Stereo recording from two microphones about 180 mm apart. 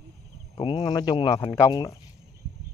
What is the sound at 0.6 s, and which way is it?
Speech, 25° left (ahead or behind).